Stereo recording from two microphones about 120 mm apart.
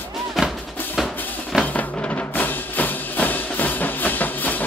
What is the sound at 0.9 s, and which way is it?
Music, centre (ahead or behind).